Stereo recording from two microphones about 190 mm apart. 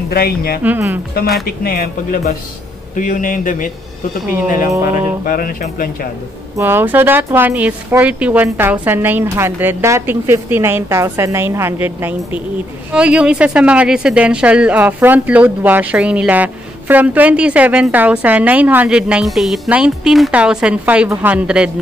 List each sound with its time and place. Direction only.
0.1 s speech: 55° left (ahead or behind)
0.7 s a woman's voice: 10° right (ahead or behind)
1.6 s speech: 50° left (ahead or behind)
5.2 s speech: 45° left (ahead or behind)
6.5 s a woman's voice: 10° right (ahead or behind)